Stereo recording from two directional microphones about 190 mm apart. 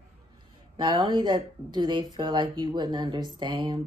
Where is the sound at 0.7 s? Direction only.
25° right (ahead or behind).